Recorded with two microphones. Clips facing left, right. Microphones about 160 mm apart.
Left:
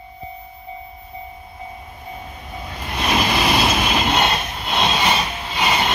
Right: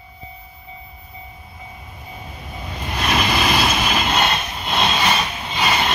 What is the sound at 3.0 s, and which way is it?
Vehicle, 25° left (ahead or behind).